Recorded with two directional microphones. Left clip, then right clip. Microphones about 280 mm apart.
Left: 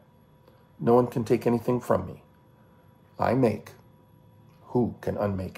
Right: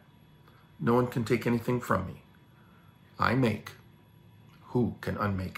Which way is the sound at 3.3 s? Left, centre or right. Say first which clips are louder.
Left 5 dB; right.